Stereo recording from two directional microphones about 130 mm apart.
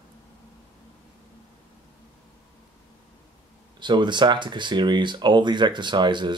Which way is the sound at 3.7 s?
35° right (ahead or behind).